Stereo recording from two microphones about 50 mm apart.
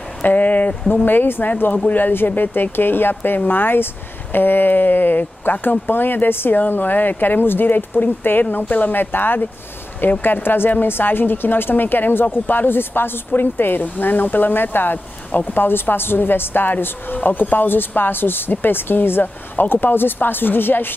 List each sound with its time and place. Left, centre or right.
0.2 s a woman's voice: left